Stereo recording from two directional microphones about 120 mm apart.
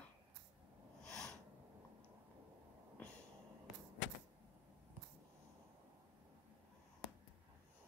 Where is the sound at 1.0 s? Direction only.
5° left (ahead or behind).